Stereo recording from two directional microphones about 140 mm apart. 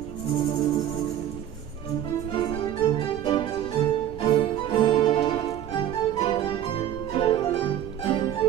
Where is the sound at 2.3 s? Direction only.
40° left (ahead or behind).